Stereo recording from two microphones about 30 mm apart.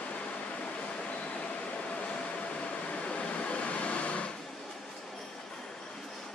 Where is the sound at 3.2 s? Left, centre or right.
Left.